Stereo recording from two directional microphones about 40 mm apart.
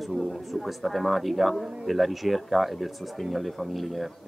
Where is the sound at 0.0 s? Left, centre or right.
Centre.